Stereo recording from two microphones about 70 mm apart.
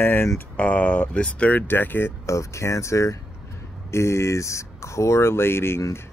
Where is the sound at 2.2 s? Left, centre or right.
Left.